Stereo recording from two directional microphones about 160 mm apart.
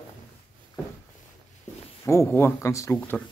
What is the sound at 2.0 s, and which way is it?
Speech, 15° left (ahead or behind).